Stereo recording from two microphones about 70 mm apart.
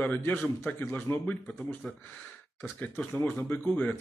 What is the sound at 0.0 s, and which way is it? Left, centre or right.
Speech, left.